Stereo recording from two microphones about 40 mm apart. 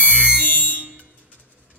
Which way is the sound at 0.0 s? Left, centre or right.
Left.